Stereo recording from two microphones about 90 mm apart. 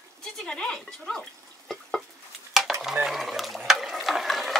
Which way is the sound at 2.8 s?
5° right (ahead or behind).